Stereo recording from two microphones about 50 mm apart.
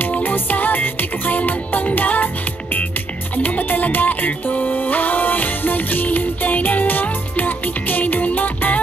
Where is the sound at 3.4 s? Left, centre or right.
Left.